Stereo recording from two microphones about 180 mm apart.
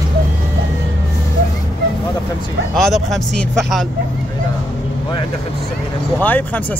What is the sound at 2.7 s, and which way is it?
Speech, centre (ahead or behind).